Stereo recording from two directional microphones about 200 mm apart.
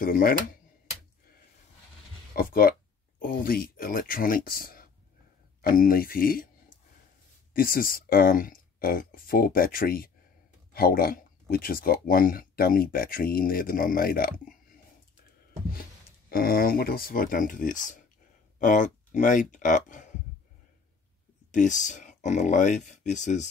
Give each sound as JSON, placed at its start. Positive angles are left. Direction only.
{"t": 0.0, "sound": "speech", "side_deg": 45}
{"t": 2.3, "sound": "speech", "side_deg": 45}
{"t": 7.5, "sound": "speech", "side_deg": 45}
{"t": 15.7, "sound": "speech", "side_deg": 45}
{"t": 21.5, "sound": "speech", "side_deg": 40}